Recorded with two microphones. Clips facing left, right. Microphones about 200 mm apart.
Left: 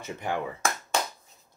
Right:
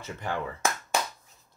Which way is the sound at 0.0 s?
15° left (ahead or behind).